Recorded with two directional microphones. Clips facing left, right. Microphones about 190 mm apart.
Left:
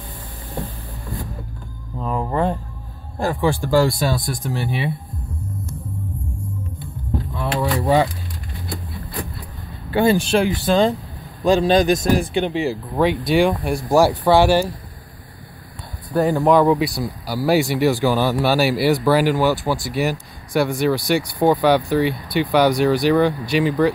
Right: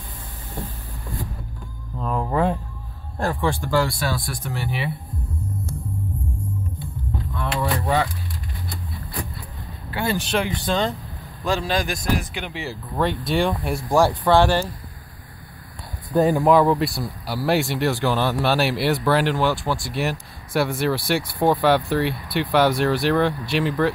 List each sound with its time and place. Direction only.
2.0 s a sound: 5° left (ahead or behind)
3.2 s speech: 5° left (ahead or behind)
4.5 s speech: 30° left (ahead or behind)
9.8 s speech: 20° left (ahead or behind)
11.4 s speech: 20° left (ahead or behind)
13.0 s speech: centre (ahead or behind)
16.2 s speech: 15° right (ahead or behind)
16.4 s speech: centre (ahead or behind)